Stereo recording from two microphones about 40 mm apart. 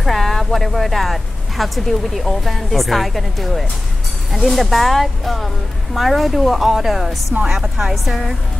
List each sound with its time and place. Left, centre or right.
0.0 s speech: centre
7.4 s speech: centre
7.9 s speech: centre